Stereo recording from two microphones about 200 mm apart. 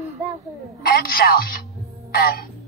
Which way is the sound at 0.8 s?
45° left (ahead or behind).